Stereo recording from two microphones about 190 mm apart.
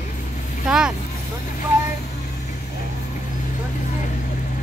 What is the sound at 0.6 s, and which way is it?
Speech, 5° right (ahead or behind).